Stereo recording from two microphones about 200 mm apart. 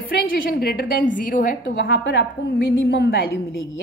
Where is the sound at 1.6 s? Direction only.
65° left (ahead or behind).